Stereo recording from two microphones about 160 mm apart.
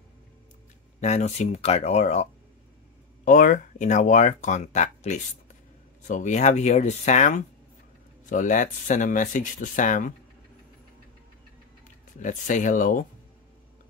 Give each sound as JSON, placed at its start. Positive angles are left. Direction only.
{"t": 1.0, "sound": "speech", "side_deg": 45}
{"t": 3.3, "sound": "speech", "side_deg": 60}
{"t": 12.2, "sound": "speech", "side_deg": 55}